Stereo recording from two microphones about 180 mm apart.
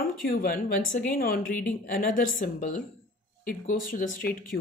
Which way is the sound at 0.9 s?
50° left (ahead or behind).